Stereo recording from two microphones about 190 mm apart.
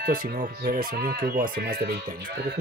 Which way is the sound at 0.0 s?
45° right (ahead or behind).